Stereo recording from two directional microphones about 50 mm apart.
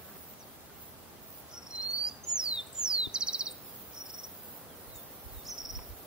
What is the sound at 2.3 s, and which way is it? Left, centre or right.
Bird, centre.